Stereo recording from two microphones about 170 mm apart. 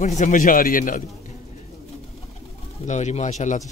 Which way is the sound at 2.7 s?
45° left (ahead or behind).